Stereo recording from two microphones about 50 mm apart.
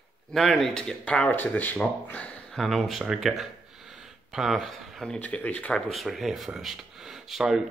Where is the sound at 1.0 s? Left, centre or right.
Left.